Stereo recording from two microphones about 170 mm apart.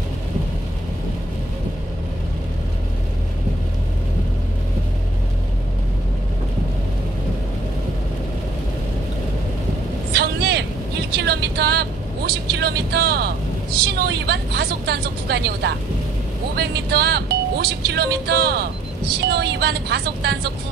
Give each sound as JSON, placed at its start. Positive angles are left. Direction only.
{"t": 10.1, "sound": "vehicle", "side_deg": -75}
{"t": 11.1, "sound": "a sound", "side_deg": -70}
{"t": 12.5, "sound": "vehicle", "side_deg": -70}
{"t": 13.9, "sound": "speech", "side_deg": -70}